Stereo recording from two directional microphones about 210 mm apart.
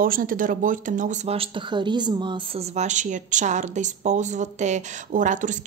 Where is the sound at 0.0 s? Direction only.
40° right (ahead or behind).